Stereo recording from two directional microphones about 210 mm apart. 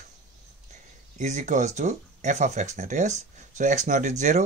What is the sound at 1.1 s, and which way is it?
Speech, 35° right (ahead or behind).